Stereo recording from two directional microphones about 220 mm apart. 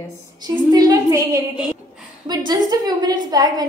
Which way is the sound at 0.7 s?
15° right (ahead or behind).